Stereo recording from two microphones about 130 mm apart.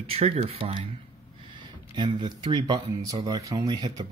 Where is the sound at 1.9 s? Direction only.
35° right (ahead or behind).